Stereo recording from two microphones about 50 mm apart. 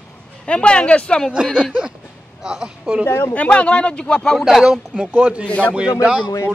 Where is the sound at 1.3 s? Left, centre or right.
Centre.